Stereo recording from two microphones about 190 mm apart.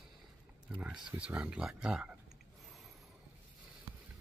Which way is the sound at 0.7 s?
5° right (ahead or behind).